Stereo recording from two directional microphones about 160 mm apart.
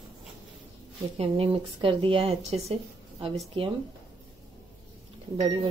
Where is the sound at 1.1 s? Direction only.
35° right (ahead or behind).